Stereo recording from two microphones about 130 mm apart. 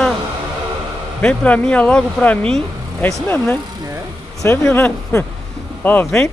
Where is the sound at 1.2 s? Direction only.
10° left (ahead or behind).